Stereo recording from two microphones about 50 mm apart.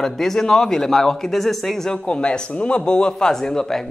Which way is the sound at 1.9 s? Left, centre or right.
Centre.